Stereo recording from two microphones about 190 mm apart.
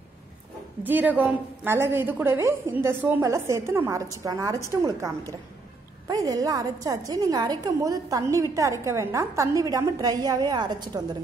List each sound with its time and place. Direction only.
0.8 s a woman's voice: 10° right (ahead or behind)